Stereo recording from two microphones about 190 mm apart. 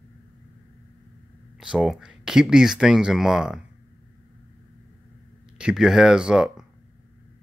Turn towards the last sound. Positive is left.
turn(degrees=-5)  # may be behind; listen again after turning